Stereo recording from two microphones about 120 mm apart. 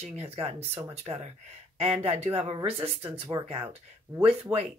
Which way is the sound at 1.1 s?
45° right (ahead or behind).